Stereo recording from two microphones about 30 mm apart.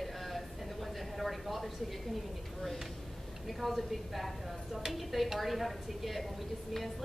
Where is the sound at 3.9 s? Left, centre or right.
Centre.